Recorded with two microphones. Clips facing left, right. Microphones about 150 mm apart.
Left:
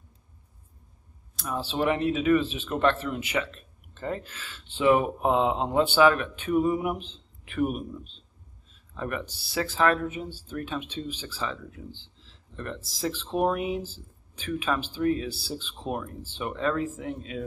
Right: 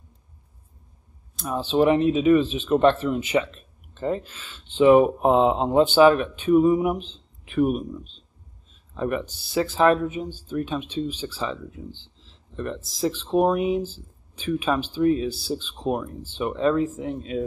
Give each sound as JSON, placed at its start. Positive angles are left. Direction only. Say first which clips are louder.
{"t": 1.4, "sound": "speech", "louder": "right 7 dB", "side_deg": -25}
{"t": 8.9, "sound": "speech", "louder": "right 6 dB", "side_deg": -25}